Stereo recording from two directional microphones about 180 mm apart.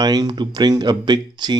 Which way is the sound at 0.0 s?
25° right (ahead or behind).